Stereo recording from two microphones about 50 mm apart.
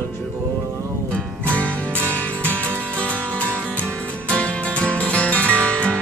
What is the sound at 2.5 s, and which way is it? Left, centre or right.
Music, left.